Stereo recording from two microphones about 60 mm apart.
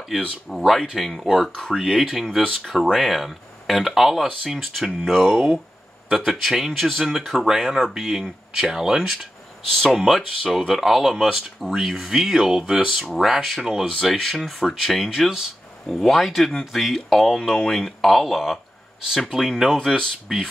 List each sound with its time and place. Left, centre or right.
0.5 s speech: centre
9.7 s speech: centre
19.6 s speech: centre